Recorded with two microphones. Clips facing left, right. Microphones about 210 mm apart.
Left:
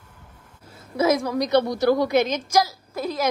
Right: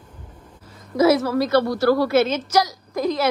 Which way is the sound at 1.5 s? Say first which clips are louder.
Even; 20° left (ahead or behind).